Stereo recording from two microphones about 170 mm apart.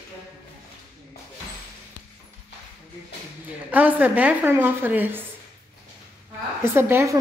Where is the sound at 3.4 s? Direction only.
10° right (ahead or behind).